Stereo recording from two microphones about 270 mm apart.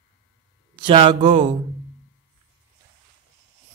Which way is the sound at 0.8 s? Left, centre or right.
Centre.